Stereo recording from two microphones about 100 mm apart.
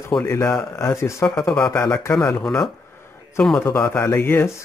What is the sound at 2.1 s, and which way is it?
Speech, 10° left (ahead or behind).